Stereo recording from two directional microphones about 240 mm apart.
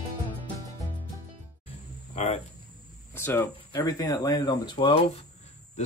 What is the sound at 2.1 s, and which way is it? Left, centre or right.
Cricket, left.